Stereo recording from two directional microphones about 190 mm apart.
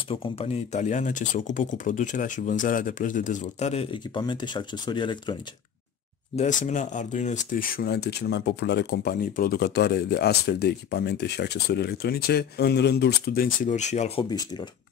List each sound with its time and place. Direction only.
0.1 s speech: 30° left (ahead or behind)
6.3 s speech: 40° left (ahead or behind)